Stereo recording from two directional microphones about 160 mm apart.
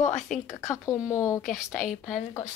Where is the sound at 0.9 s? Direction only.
20° left (ahead or behind).